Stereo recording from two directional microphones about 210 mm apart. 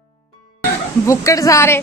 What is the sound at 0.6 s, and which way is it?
Speech, 15° left (ahead or behind).